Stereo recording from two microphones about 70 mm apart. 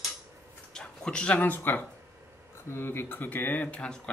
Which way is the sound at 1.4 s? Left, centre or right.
Left.